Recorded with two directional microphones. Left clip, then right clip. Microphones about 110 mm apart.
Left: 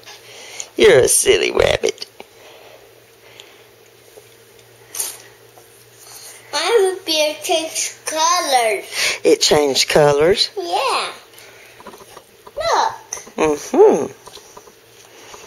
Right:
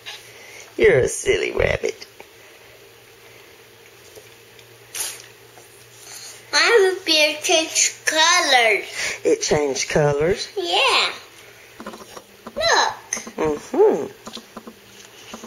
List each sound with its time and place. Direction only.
0.7 s speech: 50° left (ahead or behind)
1.8 s a sound: 55° left (ahead or behind)
6.5 s child singing: centre (ahead or behind)
8.9 s speech: 45° left (ahead or behind)
10.6 s a child's voice: 5° left (ahead or behind)
12.5 s hiccup: centre (ahead or behind)
13.7 s speech: 25° left (ahead or behind)